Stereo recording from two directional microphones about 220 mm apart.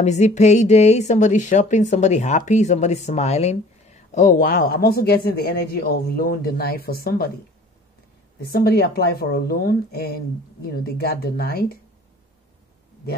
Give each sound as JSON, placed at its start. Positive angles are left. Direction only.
{"t": 0.0, "sound": "a woman's voice", "side_deg": 30}
{"t": 8.5, "sound": "a woman's voice", "side_deg": 45}